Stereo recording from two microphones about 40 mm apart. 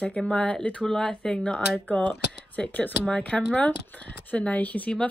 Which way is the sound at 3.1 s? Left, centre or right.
Left.